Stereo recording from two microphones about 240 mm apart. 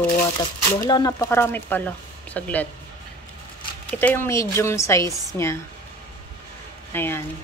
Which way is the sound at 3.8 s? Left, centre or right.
Centre.